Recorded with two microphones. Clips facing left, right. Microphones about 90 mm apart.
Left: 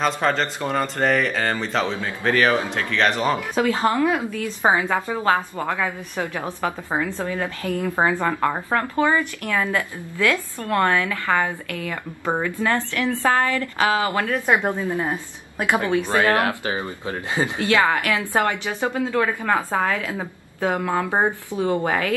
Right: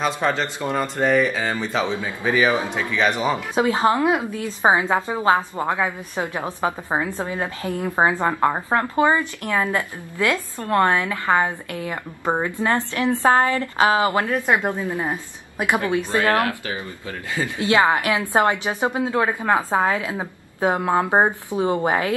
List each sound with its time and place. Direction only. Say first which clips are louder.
0.0 s speech: left 1 dB; 5° right (ahead or behind)
3.5 s a woman's voice: right 3 dB; 20° right (ahead or behind)
16.3 s speech: left 1 dB; 25° left (ahead or behind)
17.6 s a woman's voice: right 3 dB; 20° right (ahead or behind)